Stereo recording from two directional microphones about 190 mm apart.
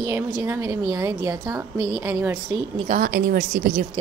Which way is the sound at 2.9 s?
50° right (ahead or behind).